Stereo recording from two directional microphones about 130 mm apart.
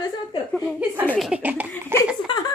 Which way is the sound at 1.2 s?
10° right (ahead or behind).